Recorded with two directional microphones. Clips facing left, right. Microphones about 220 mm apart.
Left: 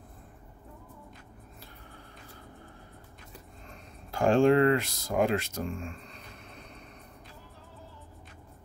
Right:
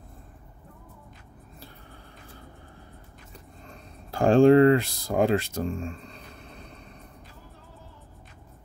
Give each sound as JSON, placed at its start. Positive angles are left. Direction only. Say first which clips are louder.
{"t": 4.1, "sound": "speech", "louder": "right 5 dB", "side_deg": -35}